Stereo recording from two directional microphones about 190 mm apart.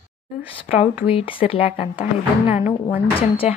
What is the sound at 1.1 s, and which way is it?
Speech, 30° left (ahead or behind).